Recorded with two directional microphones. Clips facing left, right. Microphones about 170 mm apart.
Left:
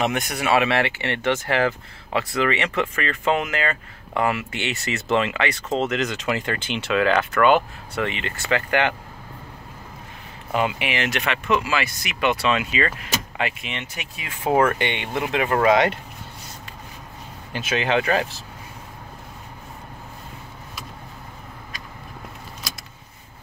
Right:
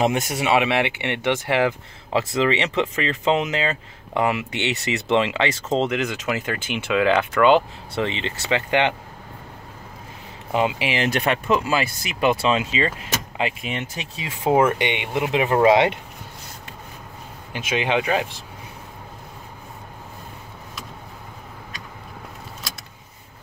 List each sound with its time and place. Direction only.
0.0 s speech: 25° right (ahead or behind)
5.9 s speech: 10° right (ahead or behind)
10.5 s speech: 25° right (ahead or behind)
13.9 s speech: 25° right (ahead or behind)
17.5 s speech: 15° right (ahead or behind)